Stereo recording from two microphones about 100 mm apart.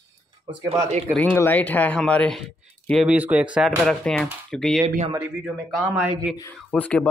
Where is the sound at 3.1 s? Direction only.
15° right (ahead or behind).